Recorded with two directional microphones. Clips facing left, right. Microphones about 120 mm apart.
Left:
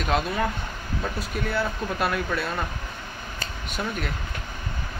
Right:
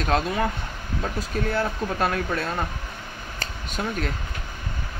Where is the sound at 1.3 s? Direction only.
40° right (ahead or behind).